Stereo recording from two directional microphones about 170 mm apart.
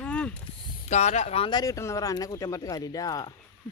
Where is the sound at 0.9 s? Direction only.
45° left (ahead or behind).